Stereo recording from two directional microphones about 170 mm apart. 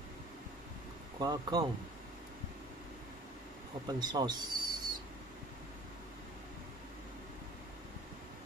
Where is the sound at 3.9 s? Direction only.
25° right (ahead or behind).